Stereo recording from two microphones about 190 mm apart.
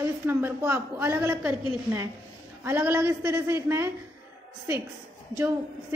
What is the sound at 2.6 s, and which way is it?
A woman's voice, 10° right (ahead or behind).